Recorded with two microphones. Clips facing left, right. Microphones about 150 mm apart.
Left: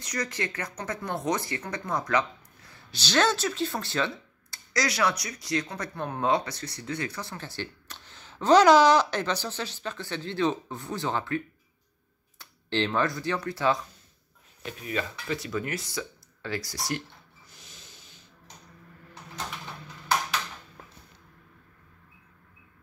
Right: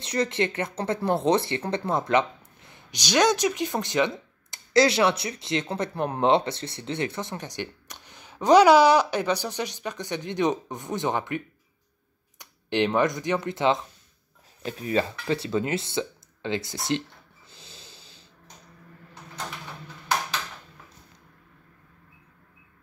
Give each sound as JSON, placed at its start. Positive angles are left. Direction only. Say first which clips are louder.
{"t": 0.0, "sound": "speech", "louder": "right 7 dB", "side_deg": -25}
{"t": 14.6, "sound": "speech", "louder": "right 6 dB", "side_deg": -35}
{"t": 17.5, "sound": "snort", "louder": "right 5 dB", "side_deg": -30}